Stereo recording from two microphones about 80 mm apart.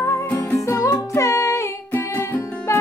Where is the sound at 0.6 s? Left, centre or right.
Left.